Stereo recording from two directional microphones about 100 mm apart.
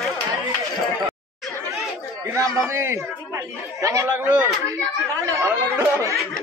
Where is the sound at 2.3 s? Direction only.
30° right (ahead or behind).